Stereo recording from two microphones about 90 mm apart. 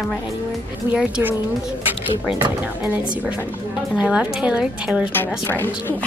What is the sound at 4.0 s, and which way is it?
Speech, 10° right (ahead or behind).